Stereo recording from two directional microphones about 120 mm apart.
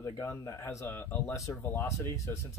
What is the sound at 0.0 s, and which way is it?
Speech, 30° left (ahead or behind).